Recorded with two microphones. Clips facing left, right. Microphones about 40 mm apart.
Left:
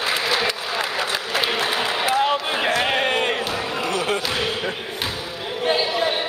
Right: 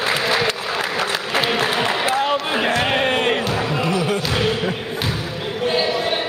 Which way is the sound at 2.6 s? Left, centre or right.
Centre.